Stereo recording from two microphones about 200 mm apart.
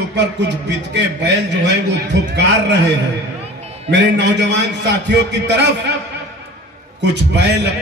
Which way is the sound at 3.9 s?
60° right (ahead or behind).